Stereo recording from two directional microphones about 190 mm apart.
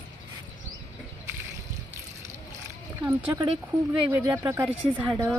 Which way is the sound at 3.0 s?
15° right (ahead or behind).